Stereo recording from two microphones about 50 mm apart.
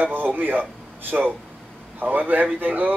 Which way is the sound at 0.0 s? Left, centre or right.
Right.